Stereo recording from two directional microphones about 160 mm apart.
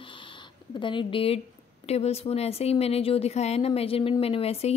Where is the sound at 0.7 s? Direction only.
30° left (ahead or behind).